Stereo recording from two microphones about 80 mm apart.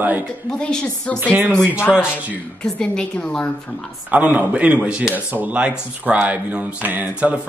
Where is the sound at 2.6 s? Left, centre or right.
Centre.